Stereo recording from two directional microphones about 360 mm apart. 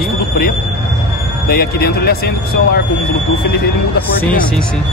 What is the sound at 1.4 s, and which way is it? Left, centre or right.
Speech, left.